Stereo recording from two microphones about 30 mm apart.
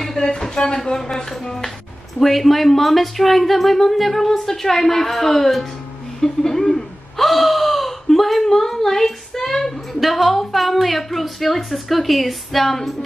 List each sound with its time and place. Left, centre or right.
0.6 s a woman's voice: centre
2.1 s a woman's voice: centre
7.2 s gasp: centre
8.5 s a woman's voice: centre
9.5 s a sound: centre
9.9 s speech: centre